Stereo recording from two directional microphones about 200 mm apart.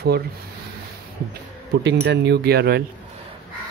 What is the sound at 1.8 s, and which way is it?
Speech, 60° right (ahead or behind).